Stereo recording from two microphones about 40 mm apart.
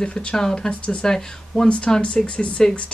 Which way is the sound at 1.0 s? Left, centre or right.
Centre.